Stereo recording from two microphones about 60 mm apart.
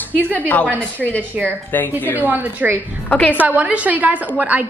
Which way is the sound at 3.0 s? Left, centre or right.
Left.